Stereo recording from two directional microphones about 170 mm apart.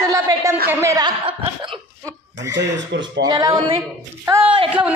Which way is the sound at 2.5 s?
90° right.